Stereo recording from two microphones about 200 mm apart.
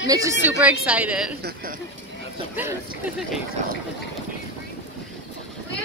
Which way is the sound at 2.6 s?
10° right (ahead or behind).